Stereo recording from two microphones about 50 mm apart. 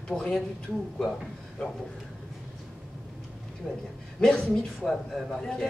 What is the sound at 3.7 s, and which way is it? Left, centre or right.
Speech, left.